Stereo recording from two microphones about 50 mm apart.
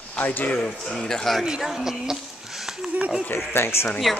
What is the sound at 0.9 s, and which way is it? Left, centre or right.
Speech, centre.